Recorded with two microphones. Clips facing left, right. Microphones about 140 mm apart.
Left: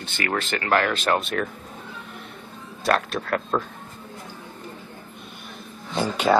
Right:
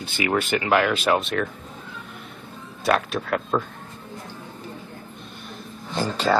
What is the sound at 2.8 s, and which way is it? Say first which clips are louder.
Speech: right 1 dB; centre (ahead or behind).